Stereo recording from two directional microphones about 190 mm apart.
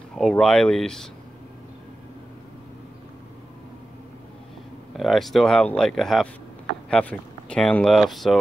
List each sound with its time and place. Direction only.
0.1 s speech: 5° left (ahead or behind)
4.9 s speech: centre (ahead or behind)